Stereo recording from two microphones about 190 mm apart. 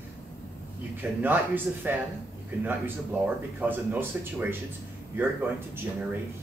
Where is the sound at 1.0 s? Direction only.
10° right (ahead or behind).